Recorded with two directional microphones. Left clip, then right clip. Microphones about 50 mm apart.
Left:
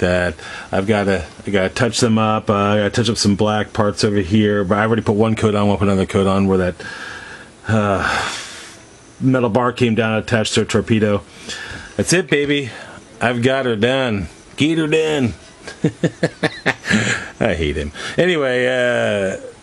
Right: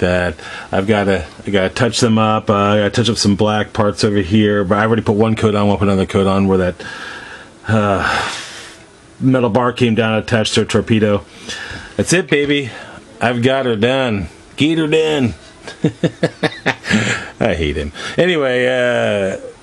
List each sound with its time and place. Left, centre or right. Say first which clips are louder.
0.0 s speech: right 1 dB; left